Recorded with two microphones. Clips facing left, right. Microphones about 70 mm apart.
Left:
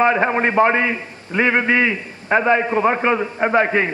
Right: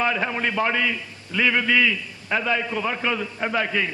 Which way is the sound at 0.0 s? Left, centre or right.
Left.